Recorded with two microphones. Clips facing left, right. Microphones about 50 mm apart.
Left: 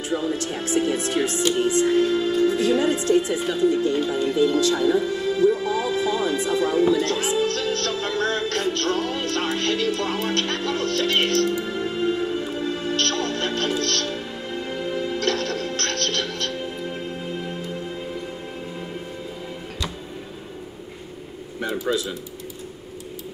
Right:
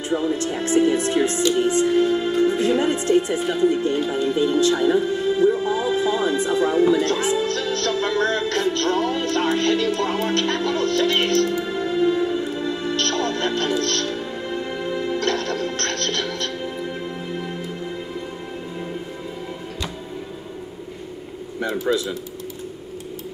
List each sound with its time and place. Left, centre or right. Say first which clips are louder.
0.1 s music: right 3 dB; right
11.8 s music: right 8 dB; left
12.4 s music: right 2 dB; right
21.5 s a sound: right 2 dB; right